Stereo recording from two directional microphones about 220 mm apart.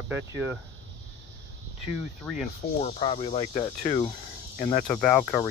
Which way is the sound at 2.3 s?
5° left (ahead or behind).